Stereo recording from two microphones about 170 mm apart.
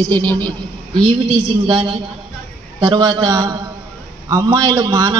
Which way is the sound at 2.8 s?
25° right (ahead or behind).